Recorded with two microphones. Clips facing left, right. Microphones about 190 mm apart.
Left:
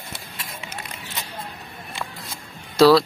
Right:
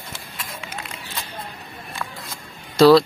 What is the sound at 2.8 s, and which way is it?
Speech, 5° left (ahead or behind).